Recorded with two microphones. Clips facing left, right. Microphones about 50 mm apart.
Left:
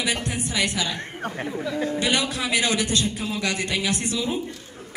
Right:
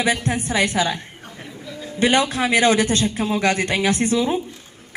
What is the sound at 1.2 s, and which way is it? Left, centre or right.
Speech, left.